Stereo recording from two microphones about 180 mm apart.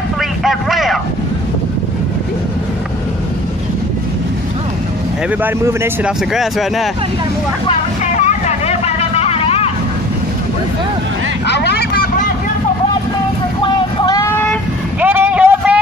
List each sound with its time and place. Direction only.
0.4 s vehicle: centre (ahead or behind)
5.4 s speech: 15° right (ahead or behind)
6.3 s speech: centre (ahead or behind)
8.0 s vehicle: 40° left (ahead or behind)
11.4 s speech: 70° left (ahead or behind)
13.9 s vehicle: 20° left (ahead or behind)
15.0 s a sound: 10° right (ahead or behind)